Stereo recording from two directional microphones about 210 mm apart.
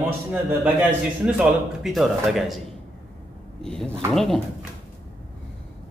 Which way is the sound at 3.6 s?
5° left (ahead or behind).